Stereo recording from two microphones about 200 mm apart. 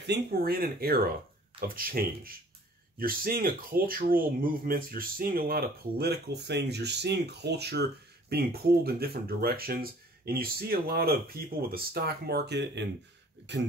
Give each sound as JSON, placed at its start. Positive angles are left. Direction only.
{"t": 0.0, "sound": "speech", "side_deg": -55}